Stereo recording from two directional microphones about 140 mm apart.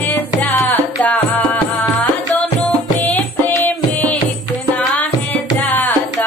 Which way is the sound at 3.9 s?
10° left (ahead or behind).